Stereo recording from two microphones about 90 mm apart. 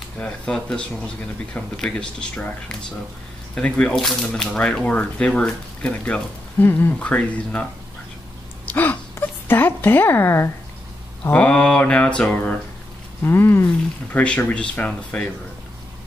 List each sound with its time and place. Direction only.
0.2 s speech: 10° left (ahead or behind)
3.5 s speech: 10° left (ahead or behind)
8.6 s a sound: 20° left (ahead or behind)
9.5 s a woman's voice: 20° left (ahead or behind)
11.2 s speech: 15° left (ahead or behind)
13.2 s a woman's voice: 25° left (ahead or behind)
14.1 s speech: 15° left (ahead or behind)